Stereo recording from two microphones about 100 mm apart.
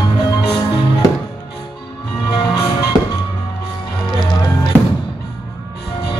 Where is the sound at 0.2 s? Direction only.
40° left (ahead or behind).